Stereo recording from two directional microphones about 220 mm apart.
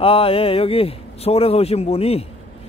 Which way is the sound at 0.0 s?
25° left (ahead or behind).